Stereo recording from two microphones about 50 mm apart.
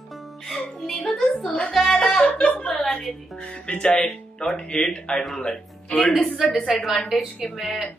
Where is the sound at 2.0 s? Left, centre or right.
Centre.